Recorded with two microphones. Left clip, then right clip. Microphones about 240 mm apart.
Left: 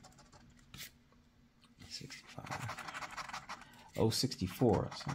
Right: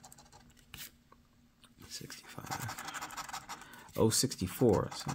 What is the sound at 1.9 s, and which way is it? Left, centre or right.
Pant, right.